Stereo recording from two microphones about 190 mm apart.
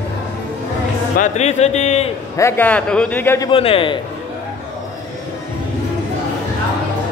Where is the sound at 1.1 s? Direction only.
40° left (ahead or behind).